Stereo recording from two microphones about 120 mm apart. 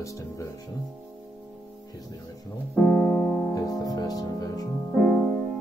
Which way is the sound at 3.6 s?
30° left (ahead or behind).